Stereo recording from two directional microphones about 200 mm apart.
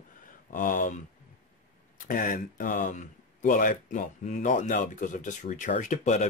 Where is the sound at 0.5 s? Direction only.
45° left (ahead or behind).